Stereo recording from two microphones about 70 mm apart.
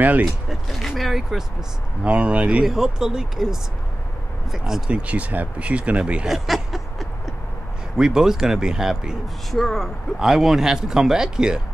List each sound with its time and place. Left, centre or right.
0.2 s speech: centre
2.0 s speech: centre
6.2 s a sound: centre
8.0 s speech: centre
9.5 s speech: centre